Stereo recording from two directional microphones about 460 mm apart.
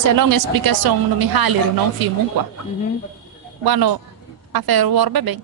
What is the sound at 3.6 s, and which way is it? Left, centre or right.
A woman's voice, right.